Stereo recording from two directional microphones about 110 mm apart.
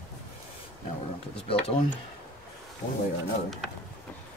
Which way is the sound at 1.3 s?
55° left (ahead or behind).